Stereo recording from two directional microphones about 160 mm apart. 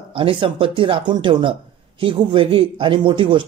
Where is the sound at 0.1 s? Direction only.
30° right (ahead or behind).